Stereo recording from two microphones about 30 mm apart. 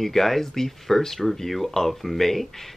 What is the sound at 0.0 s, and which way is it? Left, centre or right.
Speech, centre.